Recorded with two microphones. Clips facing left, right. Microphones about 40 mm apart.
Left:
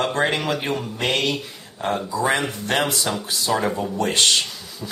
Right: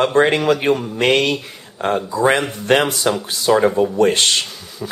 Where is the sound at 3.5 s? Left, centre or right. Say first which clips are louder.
Right 8 dB; right.